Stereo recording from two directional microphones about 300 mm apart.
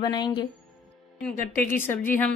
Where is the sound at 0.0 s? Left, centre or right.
Centre.